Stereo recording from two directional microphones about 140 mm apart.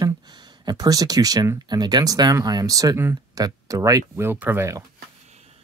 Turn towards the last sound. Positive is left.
turn(degrees=-20)  # may be behind; listen again after turning